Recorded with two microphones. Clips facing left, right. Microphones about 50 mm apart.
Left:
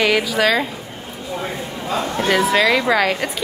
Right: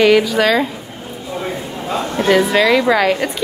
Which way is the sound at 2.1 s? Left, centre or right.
Centre.